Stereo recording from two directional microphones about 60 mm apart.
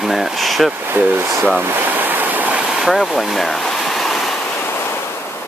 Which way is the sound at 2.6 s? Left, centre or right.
Centre.